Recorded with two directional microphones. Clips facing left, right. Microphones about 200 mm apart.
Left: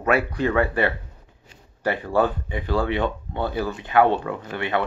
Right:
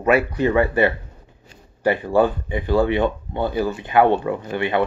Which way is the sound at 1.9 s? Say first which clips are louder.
Right 4 dB; 10° right (ahead or behind).